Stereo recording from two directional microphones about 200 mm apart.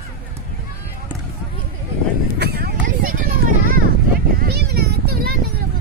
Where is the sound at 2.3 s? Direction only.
50° right (ahead or behind).